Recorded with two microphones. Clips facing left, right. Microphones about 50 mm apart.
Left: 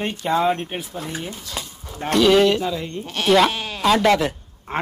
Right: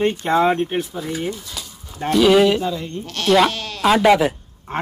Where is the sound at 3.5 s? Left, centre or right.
Centre.